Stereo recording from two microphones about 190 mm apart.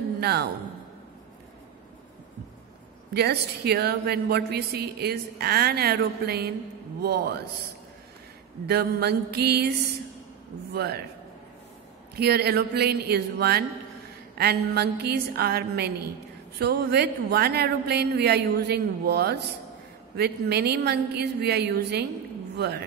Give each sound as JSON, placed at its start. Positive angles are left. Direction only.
{"t": 0.2, "sound": "speech", "side_deg": -55}
{"t": 3.1, "sound": "a woman's voice", "side_deg": -55}
{"t": 8.6, "sound": "a woman's voice", "side_deg": -55}
{"t": 12.2, "sound": "a woman's voice", "side_deg": -55}